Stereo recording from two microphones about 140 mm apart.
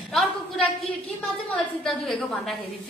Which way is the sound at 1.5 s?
5° left (ahead or behind).